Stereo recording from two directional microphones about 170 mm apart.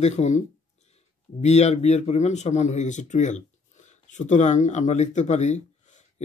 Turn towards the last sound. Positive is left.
turn(degrees=45)  # may be behind; listen again after turning